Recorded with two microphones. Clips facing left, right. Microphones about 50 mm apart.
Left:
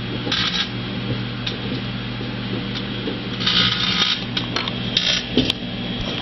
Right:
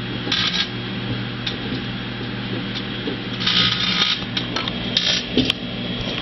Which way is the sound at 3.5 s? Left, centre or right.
Centre.